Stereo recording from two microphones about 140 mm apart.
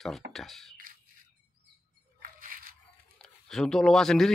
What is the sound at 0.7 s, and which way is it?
Squawk, 85° right.